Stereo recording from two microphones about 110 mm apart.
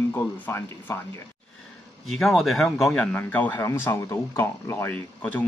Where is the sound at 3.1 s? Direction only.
15° left (ahead or behind).